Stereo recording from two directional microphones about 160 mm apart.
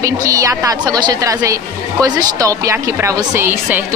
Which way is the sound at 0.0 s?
20° right (ahead or behind).